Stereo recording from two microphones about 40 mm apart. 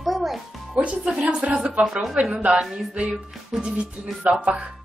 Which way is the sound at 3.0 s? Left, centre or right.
Right.